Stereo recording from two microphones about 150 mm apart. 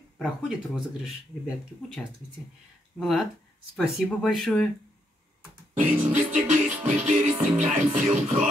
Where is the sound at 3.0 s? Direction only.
Centre (ahead or behind).